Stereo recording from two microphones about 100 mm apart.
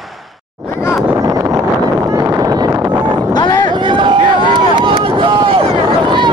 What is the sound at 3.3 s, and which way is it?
Boat, 50° left (ahead or behind).